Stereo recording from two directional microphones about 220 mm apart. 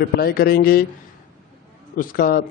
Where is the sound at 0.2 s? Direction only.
45° left (ahead or behind).